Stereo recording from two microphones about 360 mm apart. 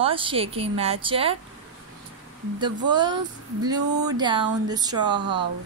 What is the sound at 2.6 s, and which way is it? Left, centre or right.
A woman's voice, centre.